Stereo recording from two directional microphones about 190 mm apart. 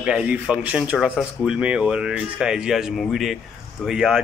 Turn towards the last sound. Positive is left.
turn(degrees=-5)  # may be behind; listen again after turning